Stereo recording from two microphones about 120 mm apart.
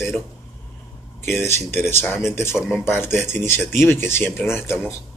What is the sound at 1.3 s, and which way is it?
Speech, 20° left (ahead or behind).